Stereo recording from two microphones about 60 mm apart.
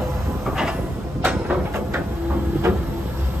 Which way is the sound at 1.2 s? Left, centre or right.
Right.